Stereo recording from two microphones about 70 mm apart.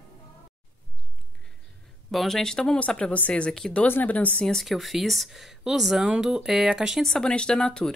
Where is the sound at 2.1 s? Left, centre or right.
Centre.